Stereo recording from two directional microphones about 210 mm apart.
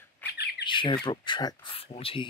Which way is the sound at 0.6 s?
25° left (ahead or behind).